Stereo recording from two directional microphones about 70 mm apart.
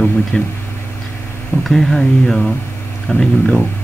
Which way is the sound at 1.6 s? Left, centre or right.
Centre.